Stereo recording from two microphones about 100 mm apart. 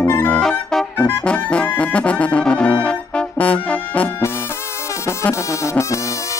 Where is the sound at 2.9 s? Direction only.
15° left (ahead or behind).